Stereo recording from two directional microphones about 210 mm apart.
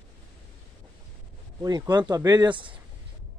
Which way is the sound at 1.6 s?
20° right (ahead or behind).